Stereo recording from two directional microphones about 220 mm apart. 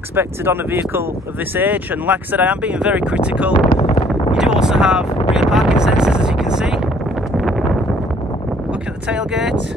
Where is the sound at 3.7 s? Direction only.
30° left (ahead or behind).